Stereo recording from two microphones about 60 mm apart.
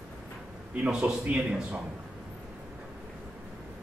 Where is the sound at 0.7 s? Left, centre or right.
Right.